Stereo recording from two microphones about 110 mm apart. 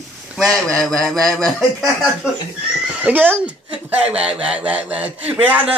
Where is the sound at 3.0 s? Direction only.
15° right (ahead or behind).